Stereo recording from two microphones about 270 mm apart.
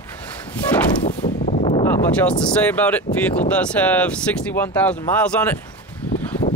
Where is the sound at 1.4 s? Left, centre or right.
Centre.